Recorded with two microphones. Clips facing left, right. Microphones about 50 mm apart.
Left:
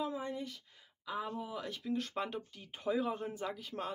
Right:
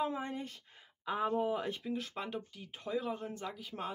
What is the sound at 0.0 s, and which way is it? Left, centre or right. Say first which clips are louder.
Speech: right 2 dB; right.